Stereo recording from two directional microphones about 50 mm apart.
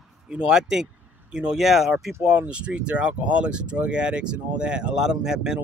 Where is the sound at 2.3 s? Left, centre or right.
Right.